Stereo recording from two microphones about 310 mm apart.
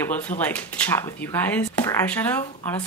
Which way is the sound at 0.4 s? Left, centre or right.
Centre.